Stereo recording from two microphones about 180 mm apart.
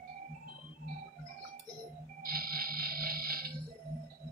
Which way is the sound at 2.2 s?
55° right (ahead or behind).